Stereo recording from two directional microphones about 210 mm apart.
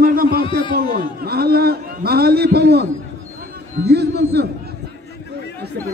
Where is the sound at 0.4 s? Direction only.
25° left (ahead or behind).